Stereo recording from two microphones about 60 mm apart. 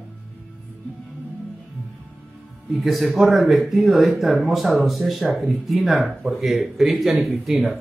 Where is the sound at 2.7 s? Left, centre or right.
Centre.